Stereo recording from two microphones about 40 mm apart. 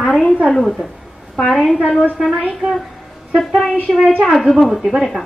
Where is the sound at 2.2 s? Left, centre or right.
Centre.